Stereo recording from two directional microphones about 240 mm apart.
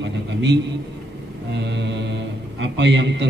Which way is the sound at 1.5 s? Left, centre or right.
Right.